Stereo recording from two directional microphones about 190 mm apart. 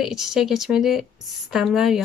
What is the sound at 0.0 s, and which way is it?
Speech, centre (ahead or behind).